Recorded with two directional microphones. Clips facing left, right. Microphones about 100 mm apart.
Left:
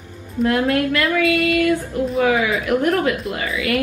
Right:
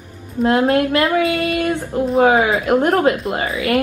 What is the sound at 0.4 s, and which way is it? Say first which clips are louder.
A woman's voice: right 3 dB; 30° right (ahead or behind).